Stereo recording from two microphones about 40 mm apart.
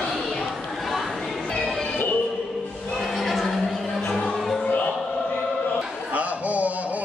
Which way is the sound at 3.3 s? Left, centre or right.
Centre.